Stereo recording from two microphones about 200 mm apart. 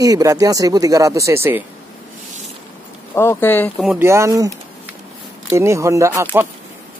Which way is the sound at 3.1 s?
10° left (ahead or behind).